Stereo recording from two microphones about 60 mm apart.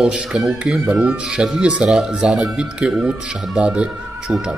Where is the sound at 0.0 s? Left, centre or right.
Centre.